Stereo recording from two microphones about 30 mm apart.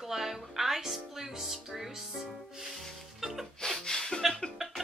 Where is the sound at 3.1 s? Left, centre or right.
Centre.